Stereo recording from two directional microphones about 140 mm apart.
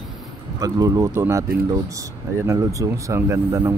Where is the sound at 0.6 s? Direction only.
25° right (ahead or behind).